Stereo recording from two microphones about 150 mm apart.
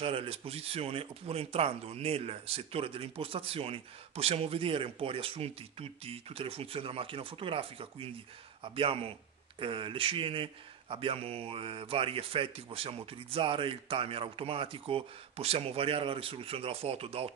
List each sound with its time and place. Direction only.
0.0 s speech: 40° right (ahead or behind)